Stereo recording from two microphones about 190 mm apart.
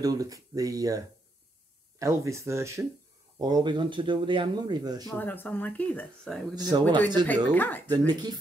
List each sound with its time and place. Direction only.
0.0 s speech: 20° right (ahead or behind)
5.0 s speech: 10° left (ahead or behind)
6.5 s speech: 20° right (ahead or behind)
7.2 s speech: 10° left (ahead or behind)
8.1 s speech: 20° right (ahead or behind)